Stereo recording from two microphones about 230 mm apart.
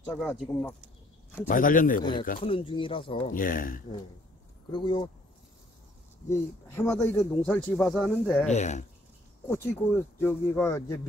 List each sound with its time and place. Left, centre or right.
0.0 s speech: centre
1.5 s a man's voice: left
2.4 s speech: left
3.3 s a man's voice: left
4.7 s speech: left
6.3 s speech: centre
8.5 s a man's voice: left
9.5 s speech: centre